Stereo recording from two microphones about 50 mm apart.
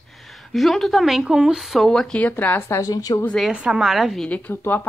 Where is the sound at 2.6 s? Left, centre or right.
Left.